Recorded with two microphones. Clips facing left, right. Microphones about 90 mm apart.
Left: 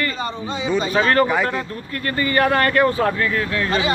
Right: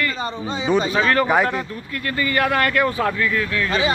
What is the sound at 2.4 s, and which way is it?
Speech, 35° left (ahead or behind).